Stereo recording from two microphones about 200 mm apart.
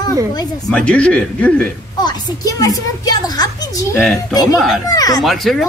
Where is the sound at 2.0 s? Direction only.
20° left (ahead or behind).